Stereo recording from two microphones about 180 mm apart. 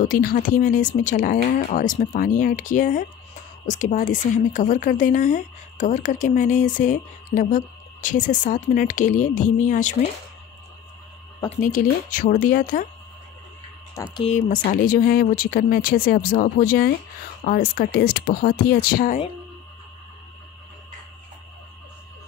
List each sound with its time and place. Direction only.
0.0 s a woman's voice: 50° left (ahead or behind)
11.6 s a woman's voice: 50° left (ahead or behind)
14.1 s speech: 35° left (ahead or behind)
14.5 s a woman's voice: 50° left (ahead or behind)